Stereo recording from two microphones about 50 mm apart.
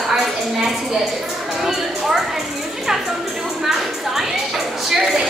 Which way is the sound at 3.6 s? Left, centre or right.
Centre.